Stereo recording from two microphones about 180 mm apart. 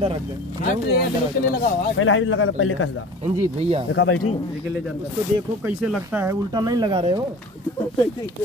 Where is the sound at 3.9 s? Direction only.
90° left.